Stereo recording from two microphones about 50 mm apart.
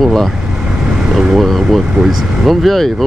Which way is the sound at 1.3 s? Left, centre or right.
Centre.